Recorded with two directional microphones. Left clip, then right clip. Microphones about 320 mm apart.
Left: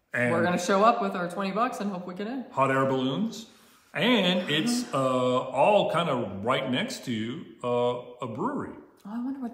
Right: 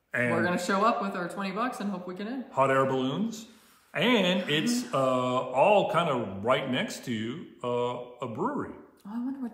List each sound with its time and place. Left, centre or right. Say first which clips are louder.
0.1 s speech: left 2 dB; centre
0.4 s speech: left 5 dB; centre
2.5 s mantra: even; centre
9.1 s speech: left 1 dB; centre